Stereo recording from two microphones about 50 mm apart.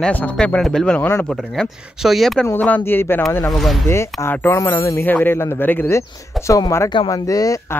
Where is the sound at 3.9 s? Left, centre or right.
Left.